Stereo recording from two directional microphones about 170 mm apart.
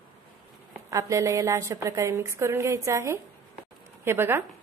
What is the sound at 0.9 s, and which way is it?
A woman's voice, 20° right (ahead or behind).